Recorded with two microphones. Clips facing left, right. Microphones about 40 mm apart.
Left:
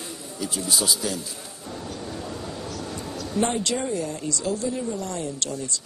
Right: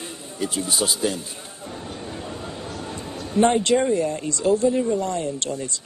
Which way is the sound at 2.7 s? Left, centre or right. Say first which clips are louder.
Right 1 dB; right.